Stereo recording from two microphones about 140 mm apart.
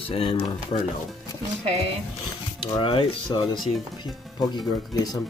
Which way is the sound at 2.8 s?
40° left (ahead or behind).